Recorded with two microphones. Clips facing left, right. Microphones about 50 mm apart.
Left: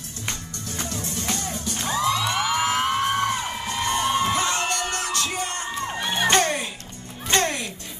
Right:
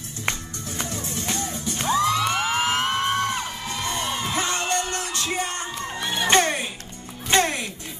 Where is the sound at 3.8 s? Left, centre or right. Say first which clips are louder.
Left 5 dB; left.